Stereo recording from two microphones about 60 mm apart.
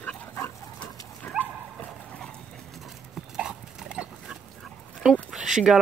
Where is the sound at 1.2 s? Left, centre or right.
Left.